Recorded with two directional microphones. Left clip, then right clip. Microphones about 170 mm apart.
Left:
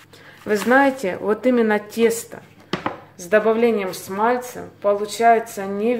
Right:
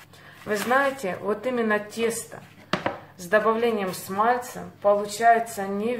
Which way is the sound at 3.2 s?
40° left (ahead or behind).